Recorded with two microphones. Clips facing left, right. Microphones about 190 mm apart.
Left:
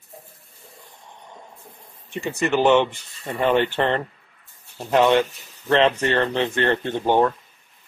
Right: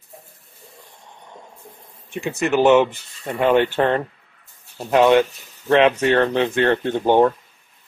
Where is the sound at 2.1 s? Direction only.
5° right (ahead or behind).